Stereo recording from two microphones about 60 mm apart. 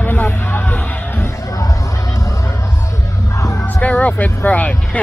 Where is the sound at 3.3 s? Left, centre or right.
Left.